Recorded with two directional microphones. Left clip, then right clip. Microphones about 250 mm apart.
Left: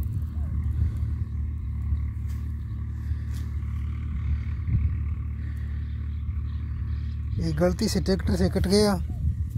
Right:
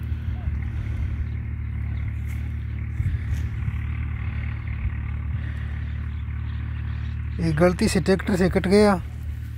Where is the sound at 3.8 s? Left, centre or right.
Left.